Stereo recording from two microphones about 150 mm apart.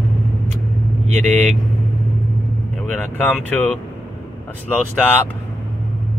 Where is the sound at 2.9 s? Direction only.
10° left (ahead or behind).